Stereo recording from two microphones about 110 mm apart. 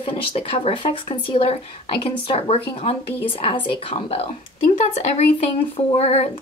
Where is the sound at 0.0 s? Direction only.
55° left (ahead or behind).